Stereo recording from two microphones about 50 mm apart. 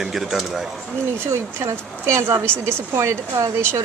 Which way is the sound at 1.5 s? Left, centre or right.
Right.